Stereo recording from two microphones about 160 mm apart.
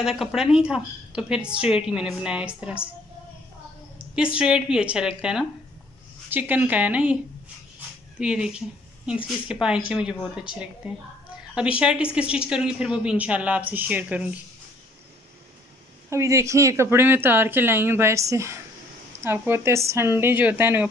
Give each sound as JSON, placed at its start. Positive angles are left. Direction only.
{"t": 0.0, "sound": "a woman's voice", "side_deg": -5}
{"t": 4.1, "sound": "a woman's voice", "side_deg": -5}
{"t": 8.2, "sound": "a woman's voice", "side_deg": -5}
{"t": 16.1, "sound": "speech", "side_deg": -20}